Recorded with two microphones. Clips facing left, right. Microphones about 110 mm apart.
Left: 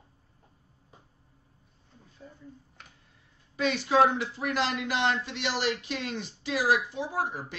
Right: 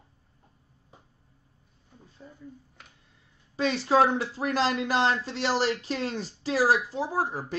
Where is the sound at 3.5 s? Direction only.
35° right (ahead or behind).